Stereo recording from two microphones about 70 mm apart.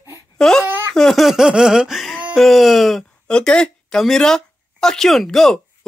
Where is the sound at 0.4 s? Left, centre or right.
Centre.